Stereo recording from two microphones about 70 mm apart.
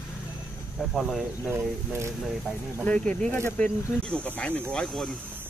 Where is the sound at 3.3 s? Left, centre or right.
Left.